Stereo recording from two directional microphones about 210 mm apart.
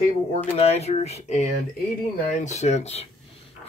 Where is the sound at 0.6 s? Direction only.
30° left (ahead or behind).